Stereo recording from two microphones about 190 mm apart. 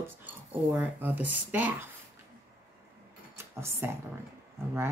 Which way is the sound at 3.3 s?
15° right (ahead or behind).